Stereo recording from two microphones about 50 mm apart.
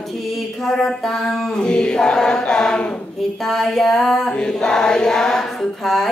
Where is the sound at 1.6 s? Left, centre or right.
Centre.